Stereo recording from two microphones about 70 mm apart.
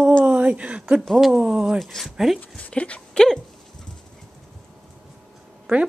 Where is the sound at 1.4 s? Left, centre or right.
Centre.